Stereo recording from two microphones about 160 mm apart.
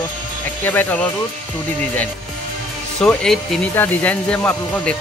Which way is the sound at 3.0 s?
Centre (ahead or behind).